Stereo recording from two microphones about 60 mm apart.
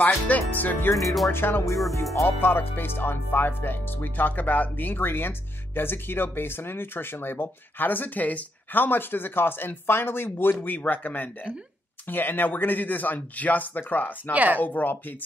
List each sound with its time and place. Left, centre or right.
0.0 s speech: left
1.0 s speech: centre
1.3 s speech: left
14.3 s speech: right
14.6 s speech: left